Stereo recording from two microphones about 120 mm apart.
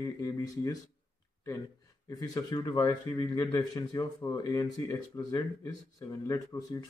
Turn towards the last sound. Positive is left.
turn(degrees=30)  # may be behind; listen again after turning